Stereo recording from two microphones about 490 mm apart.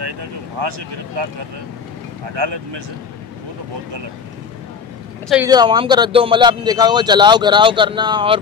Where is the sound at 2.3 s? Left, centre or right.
Right.